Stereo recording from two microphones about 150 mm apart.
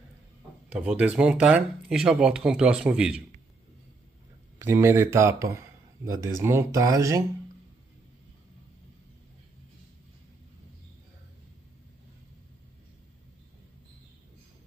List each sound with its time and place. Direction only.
0.7 s speech: 10° right (ahead or behind)
4.6 s a man's voice: 20° right (ahead or behind)